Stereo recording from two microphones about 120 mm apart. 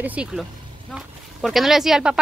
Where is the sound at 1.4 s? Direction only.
Centre (ahead or behind).